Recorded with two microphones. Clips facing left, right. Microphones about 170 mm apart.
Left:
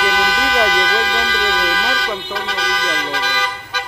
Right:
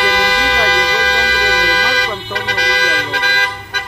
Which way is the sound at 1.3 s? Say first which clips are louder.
Right 2 dB; 70° right (ahead or behind).